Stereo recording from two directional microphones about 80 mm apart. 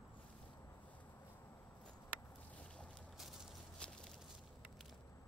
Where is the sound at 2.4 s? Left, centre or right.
Centre.